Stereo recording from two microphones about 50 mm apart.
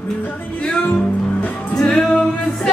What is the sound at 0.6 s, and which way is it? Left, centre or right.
Music, left.